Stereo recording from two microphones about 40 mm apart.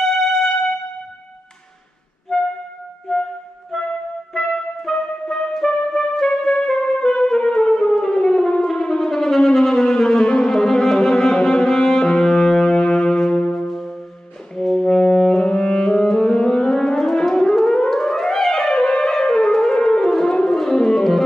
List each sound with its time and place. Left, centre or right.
2.3 s music: centre
4.9 s music: left
5.5 s music: centre
14.5 s brass instrument: centre
20.5 s music: centre